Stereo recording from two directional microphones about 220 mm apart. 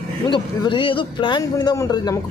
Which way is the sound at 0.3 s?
20° left (ahead or behind).